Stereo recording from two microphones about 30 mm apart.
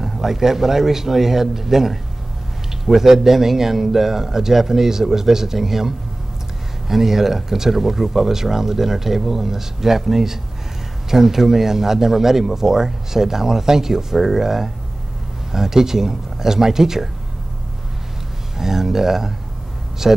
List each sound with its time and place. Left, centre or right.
0.0 s speech: centre
18.6 s speech: centre